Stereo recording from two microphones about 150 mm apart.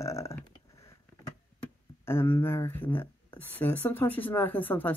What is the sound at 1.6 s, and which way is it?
Speech, 15° left (ahead or behind).